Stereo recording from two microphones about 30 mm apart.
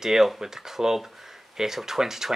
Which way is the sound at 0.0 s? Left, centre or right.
Centre.